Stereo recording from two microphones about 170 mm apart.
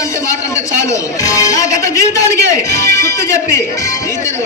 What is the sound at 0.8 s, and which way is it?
A man's voice, 20° left (ahead or behind).